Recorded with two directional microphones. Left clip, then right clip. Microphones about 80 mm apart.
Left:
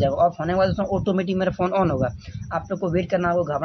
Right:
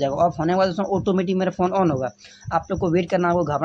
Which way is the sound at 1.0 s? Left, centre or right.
Right.